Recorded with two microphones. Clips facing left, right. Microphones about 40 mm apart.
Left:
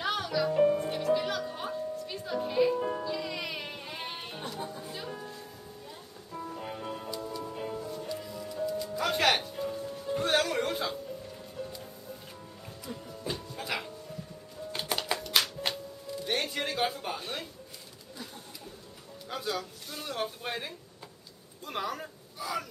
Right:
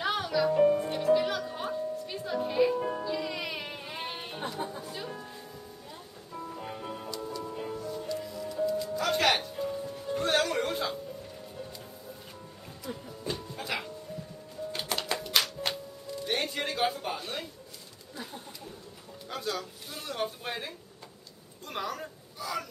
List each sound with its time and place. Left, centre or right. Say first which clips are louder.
0.0 s music: right 2 dB; centre
4.9 s speech: even; centre
6.3 s music: left 1 dB; centre
12.8 s music: right 1 dB; centre
15.1 s music: even; centre
18.1 s a sound: right 3 dB; centre
19.2 s speech: even; centre
21.6 s a sound: left 1 dB; centre